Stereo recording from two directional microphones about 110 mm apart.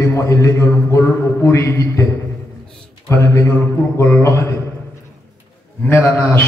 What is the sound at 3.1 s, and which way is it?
A man's voice, 25° left (ahead or behind).